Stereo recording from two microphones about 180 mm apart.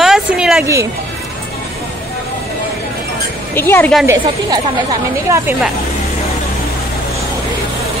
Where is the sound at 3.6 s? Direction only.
10° left (ahead or behind).